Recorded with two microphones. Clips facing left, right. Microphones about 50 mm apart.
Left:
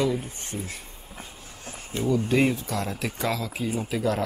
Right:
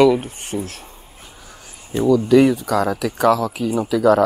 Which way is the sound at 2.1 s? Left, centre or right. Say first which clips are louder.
Right 9 dB; right.